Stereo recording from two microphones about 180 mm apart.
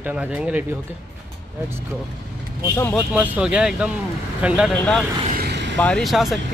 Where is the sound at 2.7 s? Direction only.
15° left (ahead or behind).